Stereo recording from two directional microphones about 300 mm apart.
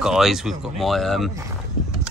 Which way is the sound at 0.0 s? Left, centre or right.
Centre.